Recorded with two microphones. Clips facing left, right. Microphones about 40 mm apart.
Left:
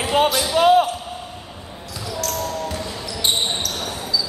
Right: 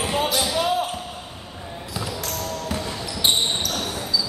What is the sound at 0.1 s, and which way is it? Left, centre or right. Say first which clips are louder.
Basketball bounce: left 7 dB; left.